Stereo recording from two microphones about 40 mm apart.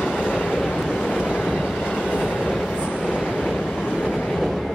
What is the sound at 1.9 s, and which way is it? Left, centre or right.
Train, left.